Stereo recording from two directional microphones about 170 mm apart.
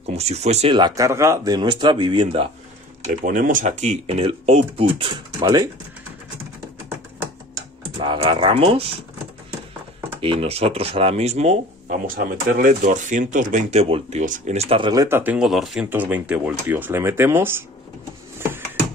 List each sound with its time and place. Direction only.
0.0 s speech: 40° right (ahead or behind)
3.3 s speech: 50° right (ahead or behind); by 5.7 s 25° right (ahead or behind)
8.0 s speech: 30° right (ahead or behind)
10.2 s speech: 35° right (ahead or behind)
12.2 s speech: 60° right (ahead or behind); by 17.6 s 15° right (ahead or behind)